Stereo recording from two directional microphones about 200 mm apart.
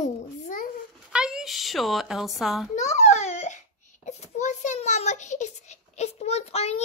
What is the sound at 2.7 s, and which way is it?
Babbling, 35° left (ahead or behind).